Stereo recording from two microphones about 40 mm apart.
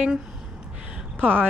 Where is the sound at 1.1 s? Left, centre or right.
Right.